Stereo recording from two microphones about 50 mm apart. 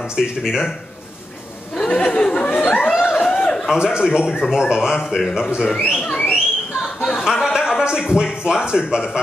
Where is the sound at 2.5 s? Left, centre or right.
Left.